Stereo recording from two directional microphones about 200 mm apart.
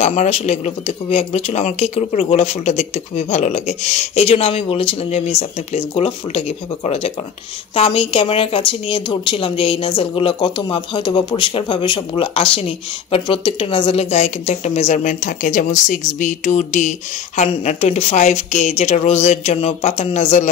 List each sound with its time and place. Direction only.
0.0 s a woman's voice: 35° left (ahead or behind)